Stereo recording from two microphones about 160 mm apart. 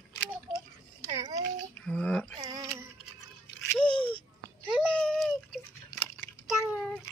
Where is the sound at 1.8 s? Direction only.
5° left (ahead or behind).